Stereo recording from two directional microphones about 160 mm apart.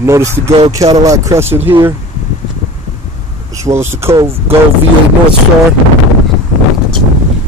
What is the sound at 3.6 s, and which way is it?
Speech, 15° right (ahead or behind).